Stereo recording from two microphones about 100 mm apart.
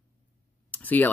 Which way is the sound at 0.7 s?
15° left (ahead or behind).